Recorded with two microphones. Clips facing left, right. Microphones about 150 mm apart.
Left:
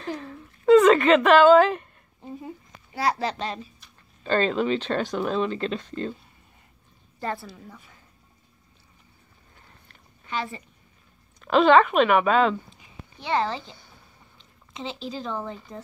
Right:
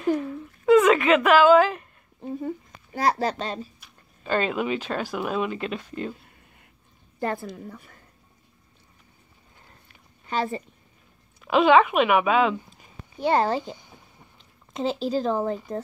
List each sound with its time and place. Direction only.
0.0 s a sound: 10° right (ahead or behind)
2.4 s speech: 45° right (ahead or behind)
4.2 s speech: 10° right (ahead or behind)
7.2 s speech: 50° right (ahead or behind)
10.2 s a woman's voice: 40° right (ahead or behind)
11.4 s speech: 10° right (ahead or behind)
12.6 s a sound: 45° right (ahead or behind)
14.7 s speech: 45° right (ahead or behind)